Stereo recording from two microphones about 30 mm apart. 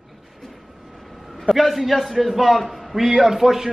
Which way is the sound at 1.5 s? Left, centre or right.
Centre.